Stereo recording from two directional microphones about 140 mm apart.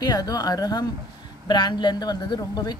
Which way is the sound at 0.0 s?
25° left (ahead or behind).